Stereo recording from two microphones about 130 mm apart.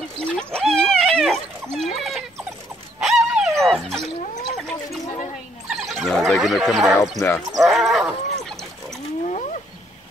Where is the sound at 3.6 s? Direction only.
Centre (ahead or behind).